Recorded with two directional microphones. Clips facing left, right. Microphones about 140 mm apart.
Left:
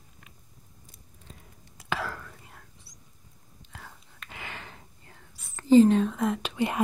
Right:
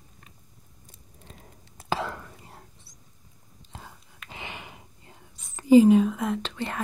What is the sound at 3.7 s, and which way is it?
Whispering, 25° right (ahead or behind).